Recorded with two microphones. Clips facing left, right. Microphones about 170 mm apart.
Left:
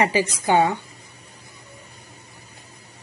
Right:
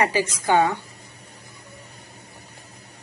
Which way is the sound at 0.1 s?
15° left (ahead or behind).